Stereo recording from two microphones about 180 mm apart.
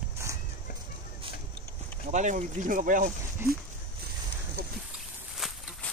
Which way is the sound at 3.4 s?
10° right (ahead or behind).